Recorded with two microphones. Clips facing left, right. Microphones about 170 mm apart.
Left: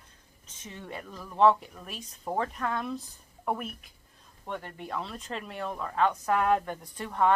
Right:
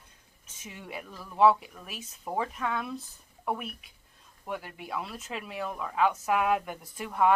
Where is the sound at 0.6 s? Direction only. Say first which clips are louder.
Left 1 dB; 10° right (ahead or behind).